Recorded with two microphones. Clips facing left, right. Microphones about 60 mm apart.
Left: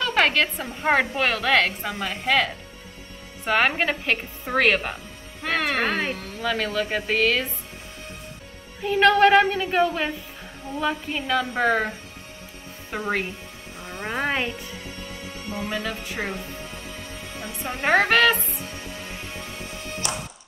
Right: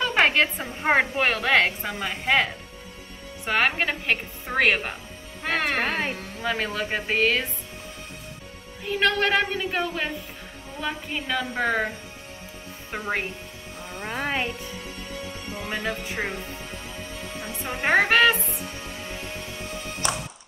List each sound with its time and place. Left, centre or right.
0.0 s a woman's voice: centre
3.4 s a woman's voice: centre
6.4 s a woman's voice: centre
8.8 s a woman's voice: centre
12.9 s a woman's voice: centre
13.9 s speech: centre
15.7 s a woman's voice: centre
17.8 s a woman's voice: centre